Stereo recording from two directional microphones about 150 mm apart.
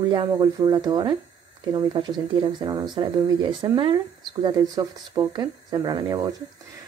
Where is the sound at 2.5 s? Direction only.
30° right (ahead or behind).